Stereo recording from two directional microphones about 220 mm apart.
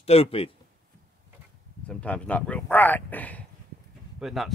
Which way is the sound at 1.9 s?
5° left (ahead or behind).